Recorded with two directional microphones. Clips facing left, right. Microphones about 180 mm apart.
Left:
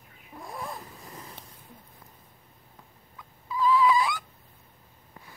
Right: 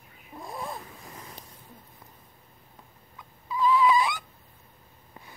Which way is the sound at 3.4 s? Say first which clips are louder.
Even; 20° right (ahead or behind).